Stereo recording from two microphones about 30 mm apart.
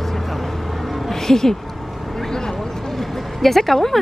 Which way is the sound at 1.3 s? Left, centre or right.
Centre.